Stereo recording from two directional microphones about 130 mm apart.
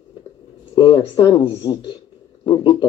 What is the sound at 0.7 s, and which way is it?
Speech, 40° left (ahead or behind).